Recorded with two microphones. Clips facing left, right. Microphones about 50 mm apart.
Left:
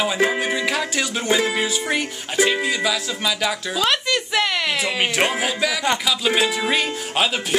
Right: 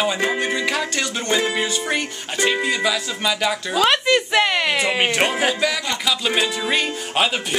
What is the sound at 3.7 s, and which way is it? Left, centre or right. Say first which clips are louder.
Speech: right 5 dB; centre.